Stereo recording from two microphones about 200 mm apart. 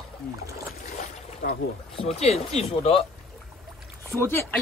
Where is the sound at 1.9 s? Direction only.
30° left (ahead or behind).